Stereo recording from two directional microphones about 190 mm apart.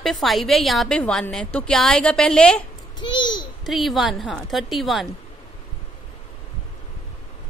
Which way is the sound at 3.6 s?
Centre (ahead or behind).